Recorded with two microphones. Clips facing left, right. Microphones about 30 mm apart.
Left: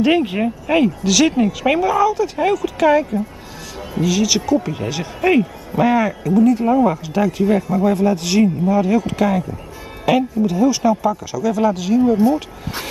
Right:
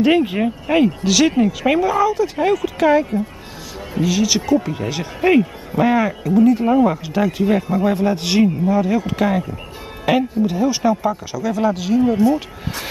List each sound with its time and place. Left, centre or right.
0.0 s speech: centre
6.0 s speech: centre